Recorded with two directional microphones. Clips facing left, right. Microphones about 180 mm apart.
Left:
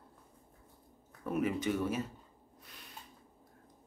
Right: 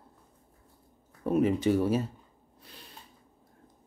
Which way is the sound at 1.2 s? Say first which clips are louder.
Right 8 dB; 30° right (ahead or behind).